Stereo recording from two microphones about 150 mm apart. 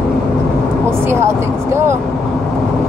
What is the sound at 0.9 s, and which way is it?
Speech, 15° right (ahead or behind).